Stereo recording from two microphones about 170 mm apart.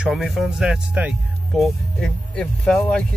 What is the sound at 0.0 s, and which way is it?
Speech, centre (ahead or behind).